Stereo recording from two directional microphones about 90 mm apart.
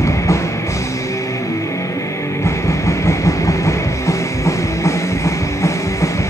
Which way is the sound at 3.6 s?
35° left (ahead or behind).